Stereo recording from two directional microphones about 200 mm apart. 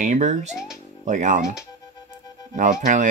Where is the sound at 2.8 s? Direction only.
40° right (ahead or behind).